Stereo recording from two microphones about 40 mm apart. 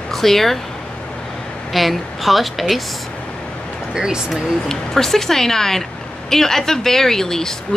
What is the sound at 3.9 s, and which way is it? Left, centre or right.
Speech, centre.